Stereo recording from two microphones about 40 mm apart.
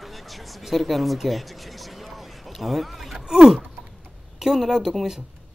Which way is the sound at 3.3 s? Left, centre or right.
Centre.